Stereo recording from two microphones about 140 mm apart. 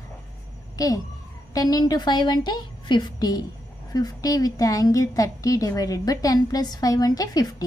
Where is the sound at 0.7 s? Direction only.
25° left (ahead or behind).